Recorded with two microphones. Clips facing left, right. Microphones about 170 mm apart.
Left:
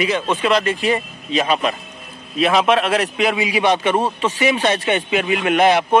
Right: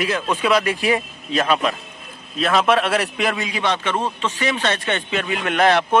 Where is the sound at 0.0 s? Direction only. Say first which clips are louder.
Left 2 dB; centre (ahead or behind).